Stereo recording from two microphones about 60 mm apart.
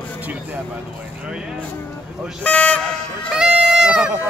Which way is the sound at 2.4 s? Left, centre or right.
Left.